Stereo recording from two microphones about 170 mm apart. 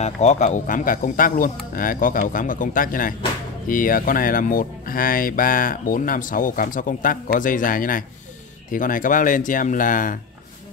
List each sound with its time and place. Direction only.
0.0 s speech: 40° left (ahead or behind)